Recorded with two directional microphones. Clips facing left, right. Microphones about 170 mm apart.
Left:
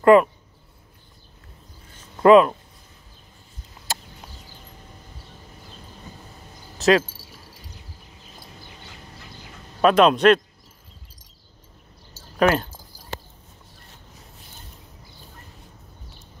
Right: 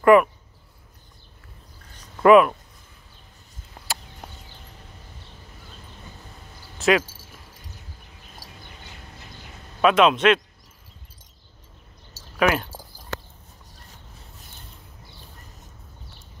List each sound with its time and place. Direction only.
0.0 s speech: 25° left (ahead or behind)
2.1 s speech: 30° left (ahead or behind)
3.8 s a sound: 50° right (ahead or behind)
6.8 s speech: 30° left (ahead or behind)
9.8 s a man's voice: 40° left (ahead or behind)
12.4 s speech: 35° left (ahead or behind)